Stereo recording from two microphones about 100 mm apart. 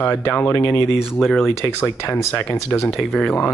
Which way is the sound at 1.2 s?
Centre (ahead or behind).